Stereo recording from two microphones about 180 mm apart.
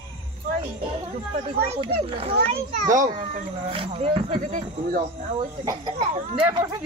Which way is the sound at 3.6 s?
30° right (ahead or behind).